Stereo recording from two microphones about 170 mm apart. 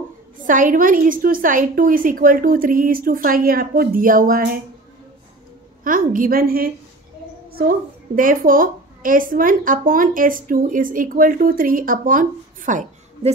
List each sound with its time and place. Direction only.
0.4 s a woman's voice: 50° right (ahead or behind)
5.9 s a woman's voice: 55° right (ahead or behind)
8.2 s a woman's voice: 55° right (ahead or behind)